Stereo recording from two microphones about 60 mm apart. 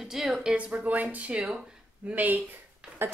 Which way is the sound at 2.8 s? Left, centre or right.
Centre.